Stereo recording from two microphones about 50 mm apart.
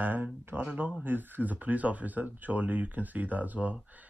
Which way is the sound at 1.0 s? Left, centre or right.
Right.